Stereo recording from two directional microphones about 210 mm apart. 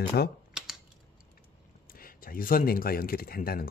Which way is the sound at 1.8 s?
45° left (ahead or behind).